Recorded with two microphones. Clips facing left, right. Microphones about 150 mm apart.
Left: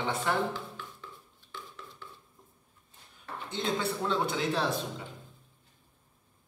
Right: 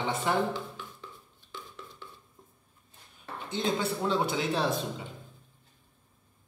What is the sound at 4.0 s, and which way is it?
Speech, 5° right (ahead or behind).